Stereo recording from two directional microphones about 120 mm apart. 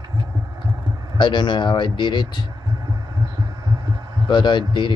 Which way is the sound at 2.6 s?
30° right (ahead or behind).